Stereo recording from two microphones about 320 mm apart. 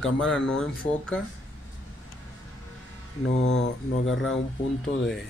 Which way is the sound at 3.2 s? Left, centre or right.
Left.